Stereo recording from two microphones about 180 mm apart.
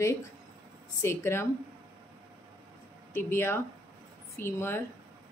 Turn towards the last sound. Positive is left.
turn(degrees=15)  # may be behind; listen again after turning